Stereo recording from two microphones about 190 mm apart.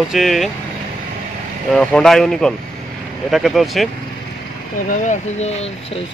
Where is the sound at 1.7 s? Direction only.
5° left (ahead or behind).